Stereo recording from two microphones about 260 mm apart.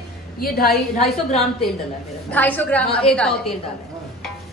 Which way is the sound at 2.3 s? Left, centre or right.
Centre.